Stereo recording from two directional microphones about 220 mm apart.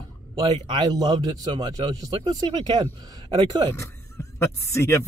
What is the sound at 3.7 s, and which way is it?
Speech, 10° left (ahead or behind).